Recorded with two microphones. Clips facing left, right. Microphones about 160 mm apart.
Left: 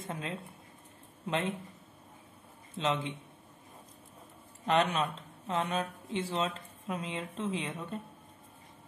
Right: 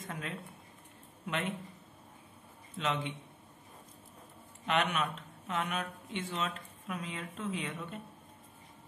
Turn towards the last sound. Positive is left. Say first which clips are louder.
# left 2 dB
turn(degrees=30)  # may be behind; listen again after turning